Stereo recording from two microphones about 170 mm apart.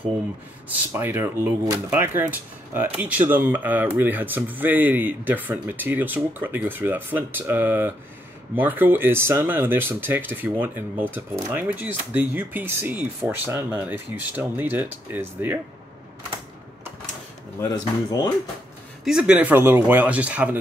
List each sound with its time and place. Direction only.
0.7 s speech: 10° right (ahead or behind)
17.6 s speech: 25° left (ahead or behind)
19.0 s speech: 5° right (ahead or behind)